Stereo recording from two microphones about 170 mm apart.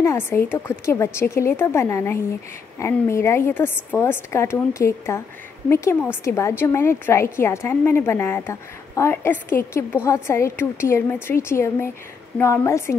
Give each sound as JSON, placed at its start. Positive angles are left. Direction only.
{"t": 0.0, "sound": "a woman's voice", "side_deg": 15}